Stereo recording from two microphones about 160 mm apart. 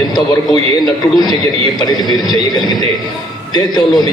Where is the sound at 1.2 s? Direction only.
25° left (ahead or behind).